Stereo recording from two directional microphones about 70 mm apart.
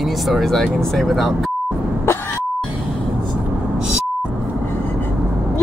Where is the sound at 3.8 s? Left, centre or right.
Centre.